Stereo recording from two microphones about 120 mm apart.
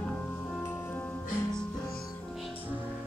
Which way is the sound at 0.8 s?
15° left (ahead or behind).